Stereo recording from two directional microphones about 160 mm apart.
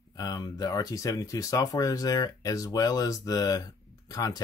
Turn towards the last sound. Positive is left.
turn(degrees=25)  # may be behind; listen again after turning